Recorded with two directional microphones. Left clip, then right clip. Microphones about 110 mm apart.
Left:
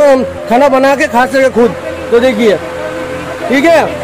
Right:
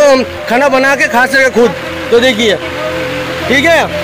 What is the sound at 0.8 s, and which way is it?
Speech, 15° left (ahead or behind).